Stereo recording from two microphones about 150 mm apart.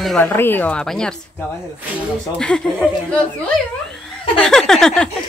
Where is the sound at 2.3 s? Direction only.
5° left (ahead or behind).